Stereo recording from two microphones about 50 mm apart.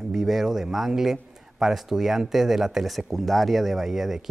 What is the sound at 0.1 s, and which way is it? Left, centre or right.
A man's voice, centre.